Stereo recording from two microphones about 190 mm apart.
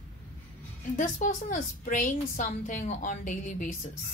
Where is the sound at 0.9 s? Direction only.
40° left (ahead or behind).